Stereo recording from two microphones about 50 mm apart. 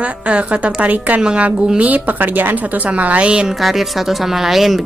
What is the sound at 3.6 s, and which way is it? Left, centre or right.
Speech, centre.